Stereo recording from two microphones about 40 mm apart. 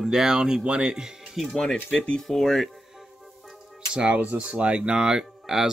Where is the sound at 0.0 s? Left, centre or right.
Centre.